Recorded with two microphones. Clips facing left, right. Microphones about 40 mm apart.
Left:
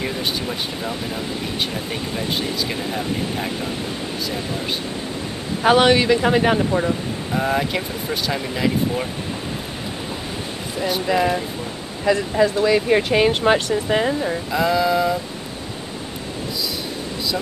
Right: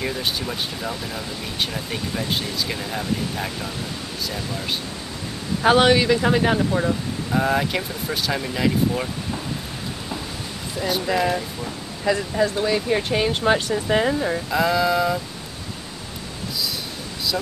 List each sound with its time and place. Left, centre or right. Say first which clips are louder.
0.0 s speech: left 1 dB; centre
5.6 s speech: left 1 dB; centre
10.8 s speech: left 2 dB; centre
12.6 s speech: left 5 dB; left
13.3 s speech: left 3 dB; centre
13.8 s speech: even; centre